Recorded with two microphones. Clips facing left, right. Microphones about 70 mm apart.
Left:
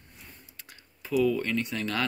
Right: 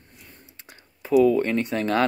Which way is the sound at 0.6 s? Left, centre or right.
Right.